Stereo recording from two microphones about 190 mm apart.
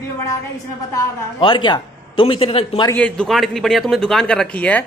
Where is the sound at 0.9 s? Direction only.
25° left (ahead or behind).